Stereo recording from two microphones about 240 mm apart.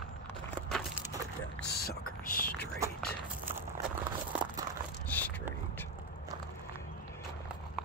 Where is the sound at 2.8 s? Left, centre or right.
Centre.